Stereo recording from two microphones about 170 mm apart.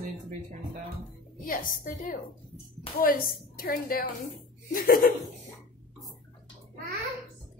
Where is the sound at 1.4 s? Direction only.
55° left (ahead or behind).